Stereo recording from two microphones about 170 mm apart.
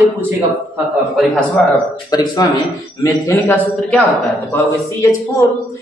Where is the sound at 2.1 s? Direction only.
20° left (ahead or behind).